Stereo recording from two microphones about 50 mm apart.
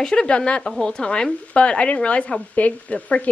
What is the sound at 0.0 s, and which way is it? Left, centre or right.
Speech, centre.